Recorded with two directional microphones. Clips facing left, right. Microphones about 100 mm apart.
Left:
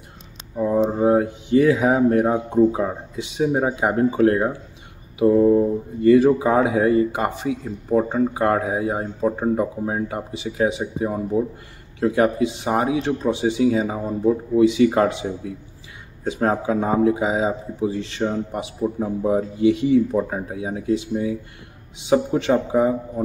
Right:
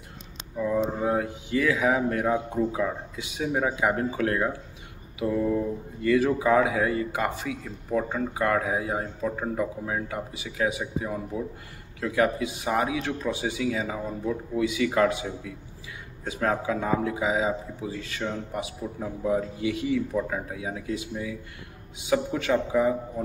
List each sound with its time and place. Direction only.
0.6 s speech: 35° left (ahead or behind)